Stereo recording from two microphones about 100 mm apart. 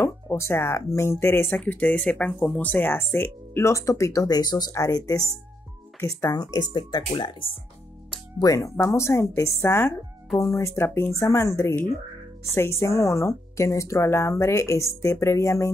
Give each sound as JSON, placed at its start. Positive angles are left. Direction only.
{"t": 0.0, "sound": "speech", "side_deg": 25}
{"t": 6.3, "sound": "speech", "side_deg": 45}
{"t": 7.2, "sound": "speech", "side_deg": 55}
{"t": 8.4, "sound": "speech", "side_deg": 35}
{"t": 12.8, "sound": "speech", "side_deg": 30}